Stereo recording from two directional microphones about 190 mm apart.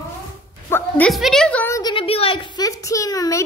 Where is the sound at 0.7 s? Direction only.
5° left (ahead or behind).